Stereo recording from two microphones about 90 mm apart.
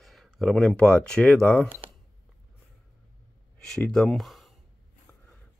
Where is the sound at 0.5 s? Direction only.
15° left (ahead or behind).